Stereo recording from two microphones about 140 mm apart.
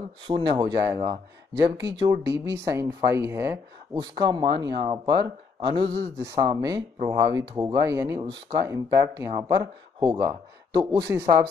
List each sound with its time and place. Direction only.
0.4 s speech: 30° right (ahead or behind)
8.2 s speech: 30° right (ahead or behind)